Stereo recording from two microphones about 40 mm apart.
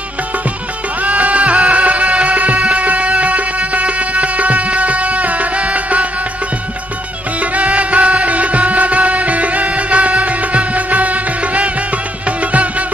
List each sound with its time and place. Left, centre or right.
1.0 s music: right
7.3 s music: right